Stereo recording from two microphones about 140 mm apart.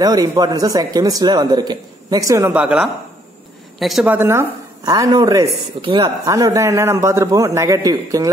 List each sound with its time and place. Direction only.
0.0 s speech: 25° right (ahead or behind)
2.5 s a woman's voice: 10° right (ahead or behind)
4.0 s a woman's voice: 15° right (ahead or behind)
4.8 s speech: 25° right (ahead or behind)
6.2 s speech: 25° right (ahead or behind)